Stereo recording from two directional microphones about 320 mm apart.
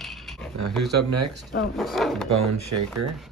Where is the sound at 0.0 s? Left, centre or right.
Centre.